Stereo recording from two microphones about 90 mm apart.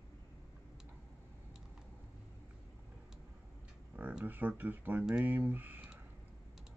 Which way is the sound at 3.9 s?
15° right (ahead or behind).